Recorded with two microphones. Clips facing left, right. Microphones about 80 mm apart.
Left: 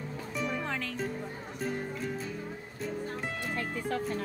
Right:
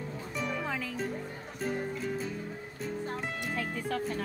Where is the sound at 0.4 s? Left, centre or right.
Centre.